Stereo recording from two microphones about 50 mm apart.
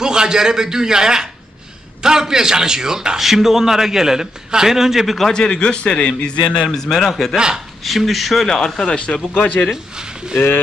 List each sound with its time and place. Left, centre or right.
0.0 s a man's voice: centre
5.3 s a man's voice: centre
6.7 s a man's voice: centre
7.3 s a man's voice: centre
7.8 s speech: centre
8.5 s a man's voice: centre
10.3 s speech: left